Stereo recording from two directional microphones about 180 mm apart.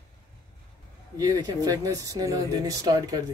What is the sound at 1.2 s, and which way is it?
Speech, 20° right (ahead or behind).